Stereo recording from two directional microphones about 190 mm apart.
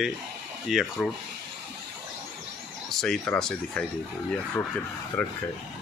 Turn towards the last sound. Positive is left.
turn(degrees=5)  # may be behind; listen again after turning